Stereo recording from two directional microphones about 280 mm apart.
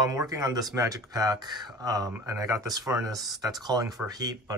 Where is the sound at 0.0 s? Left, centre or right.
Centre.